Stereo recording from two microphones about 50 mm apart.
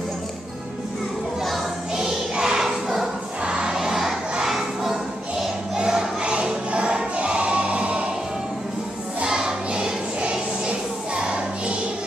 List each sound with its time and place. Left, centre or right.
1.4 s music: centre
2.3 s a sound: centre
3.4 s crowd: centre
5.8 s choir: centre
9.2 s choir: centre
10.7 s a sound: centre